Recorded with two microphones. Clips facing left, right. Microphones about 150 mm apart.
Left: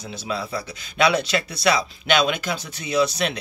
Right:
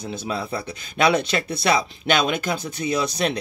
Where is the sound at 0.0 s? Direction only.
50° right (ahead or behind).